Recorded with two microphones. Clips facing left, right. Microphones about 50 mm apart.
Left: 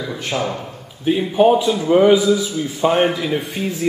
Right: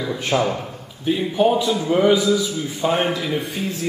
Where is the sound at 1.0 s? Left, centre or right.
Centre.